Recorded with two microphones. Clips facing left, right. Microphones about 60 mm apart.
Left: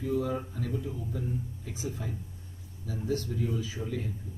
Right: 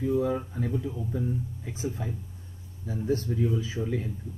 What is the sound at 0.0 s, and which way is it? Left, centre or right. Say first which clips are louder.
Speech: right 4 dB; right.